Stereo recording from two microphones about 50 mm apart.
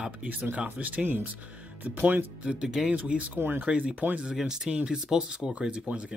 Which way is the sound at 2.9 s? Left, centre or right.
Right.